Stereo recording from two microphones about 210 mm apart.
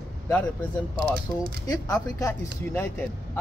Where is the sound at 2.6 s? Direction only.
10° left (ahead or behind).